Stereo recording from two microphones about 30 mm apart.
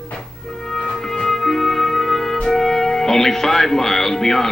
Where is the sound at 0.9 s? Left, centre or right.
Centre.